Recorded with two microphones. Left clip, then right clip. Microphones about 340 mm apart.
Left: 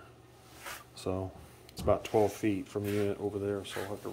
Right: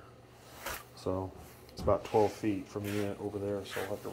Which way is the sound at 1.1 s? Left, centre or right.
Centre.